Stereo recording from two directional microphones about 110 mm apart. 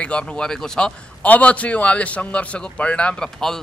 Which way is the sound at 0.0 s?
10° left (ahead or behind).